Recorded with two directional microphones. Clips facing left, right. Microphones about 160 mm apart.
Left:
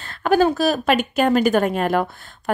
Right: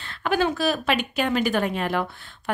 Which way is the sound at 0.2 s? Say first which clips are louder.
Left 6 dB; 40° left (ahead or behind).